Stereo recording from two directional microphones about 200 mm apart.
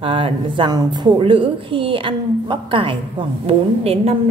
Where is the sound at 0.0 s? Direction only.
25° right (ahead or behind).